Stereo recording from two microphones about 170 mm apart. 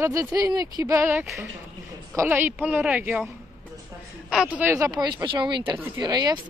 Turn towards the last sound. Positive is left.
turn(degrees=-25)  # may be behind; listen again after turning